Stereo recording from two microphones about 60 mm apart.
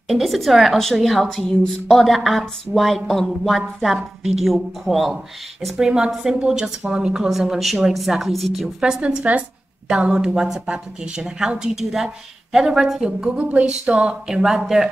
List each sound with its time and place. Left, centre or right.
0.1 s a woman's voice: centre
5.8 s speech: centre
7.2 s a woman's voice: centre
9.0 s a sound: right
9.8 s speech: centre
13.4 s a sound: right
14.2 s speech: centre